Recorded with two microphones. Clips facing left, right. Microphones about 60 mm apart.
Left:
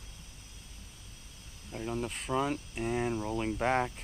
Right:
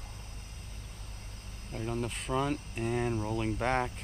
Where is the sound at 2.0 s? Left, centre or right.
Centre.